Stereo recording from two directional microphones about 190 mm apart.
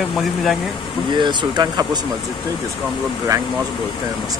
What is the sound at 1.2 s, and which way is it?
Speech, 25° right (ahead or behind).